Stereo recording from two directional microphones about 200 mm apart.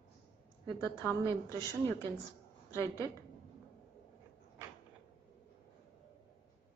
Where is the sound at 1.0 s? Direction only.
10° left (ahead or behind).